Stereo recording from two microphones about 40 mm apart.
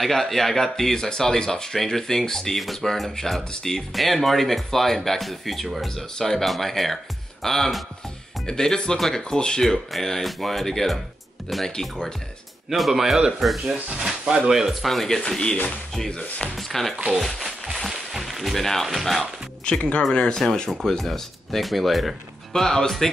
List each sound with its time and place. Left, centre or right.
0.0 s speech: centre
12.6 s speech: centre
13.9 s speech: centre
14.7 s speech: centre
15.2 s speech: left
17.4 s a sound: centre
18.9 s speech: centre
19.6 s speech: left
21.0 s speech: centre
22.5 s speech: centre